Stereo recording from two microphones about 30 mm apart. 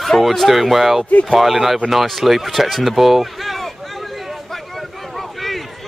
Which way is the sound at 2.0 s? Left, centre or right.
Centre.